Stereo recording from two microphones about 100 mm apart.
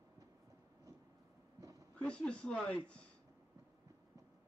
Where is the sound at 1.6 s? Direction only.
35° right (ahead or behind).